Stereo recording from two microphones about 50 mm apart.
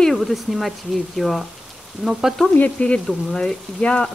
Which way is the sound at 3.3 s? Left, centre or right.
Centre.